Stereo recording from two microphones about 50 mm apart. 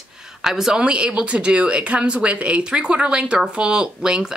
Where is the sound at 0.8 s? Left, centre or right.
Right.